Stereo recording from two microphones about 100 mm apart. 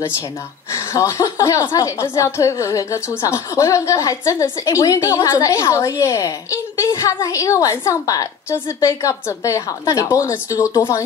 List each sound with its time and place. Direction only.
0.7 s speech: 30° left (ahead or behind)